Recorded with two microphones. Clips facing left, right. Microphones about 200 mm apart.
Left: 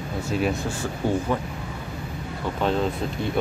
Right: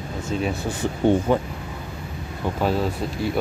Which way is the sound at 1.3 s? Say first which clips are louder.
Right 5 dB; 30° right (ahead or behind).